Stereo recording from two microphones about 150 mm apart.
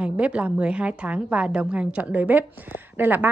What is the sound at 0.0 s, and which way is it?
A woman's voice, 10° right (ahead or behind).